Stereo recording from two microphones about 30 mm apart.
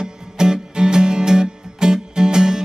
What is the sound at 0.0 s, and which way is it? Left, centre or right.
Music, right.